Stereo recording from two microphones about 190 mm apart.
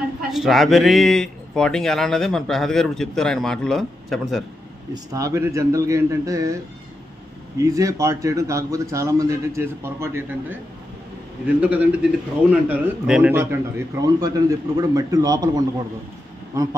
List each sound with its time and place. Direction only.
0.3 s speech: centre (ahead or behind)
4.9 s a man's voice: 15° right (ahead or behind)